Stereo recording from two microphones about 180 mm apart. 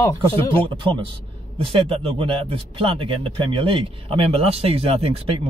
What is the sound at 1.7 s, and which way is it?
Speech, 30° right (ahead or behind).